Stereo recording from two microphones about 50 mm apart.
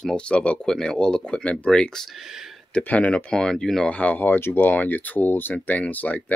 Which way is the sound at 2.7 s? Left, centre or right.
Left.